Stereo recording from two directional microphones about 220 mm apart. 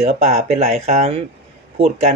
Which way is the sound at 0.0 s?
30° right (ahead or behind).